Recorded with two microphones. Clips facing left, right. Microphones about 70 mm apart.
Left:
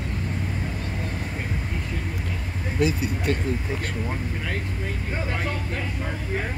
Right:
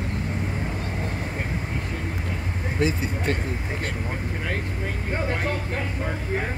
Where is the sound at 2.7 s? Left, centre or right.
Right.